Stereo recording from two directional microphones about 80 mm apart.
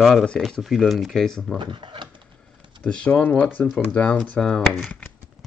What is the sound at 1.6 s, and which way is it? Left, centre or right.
Speech, right.